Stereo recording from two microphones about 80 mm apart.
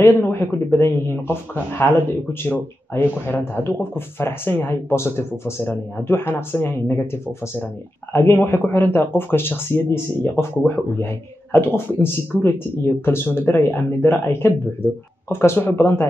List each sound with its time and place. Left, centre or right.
0.0 s speech: left
11.5 s speech: left